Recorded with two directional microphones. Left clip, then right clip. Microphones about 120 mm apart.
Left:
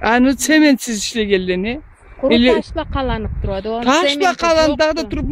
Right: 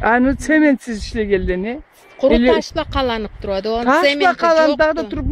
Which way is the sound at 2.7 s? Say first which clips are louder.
Right 2 dB; 35° right (ahead or behind).